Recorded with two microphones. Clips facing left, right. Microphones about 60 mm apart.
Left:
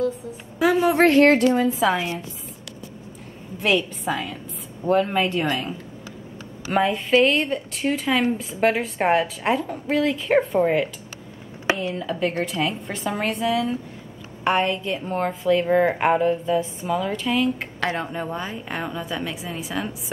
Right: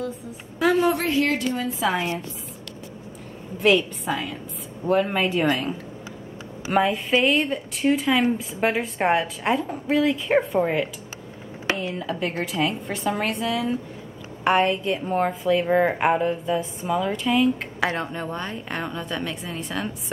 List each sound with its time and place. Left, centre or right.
0.6 s speech: centre
1.0 s a sound: left
1.6 s a woman's voice: centre
3.5 s a woman's voice: centre